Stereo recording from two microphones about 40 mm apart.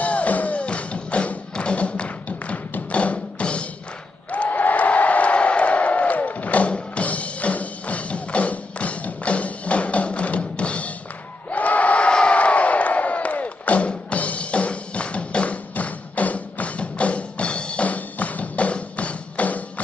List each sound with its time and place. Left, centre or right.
0.0 s music: left
4.3 s a sound: left
12.1 s crowd: left
12.4 s music: left
17.8 s music: left